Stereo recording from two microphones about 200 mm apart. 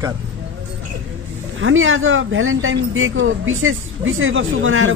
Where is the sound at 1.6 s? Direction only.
75° right (ahead or behind).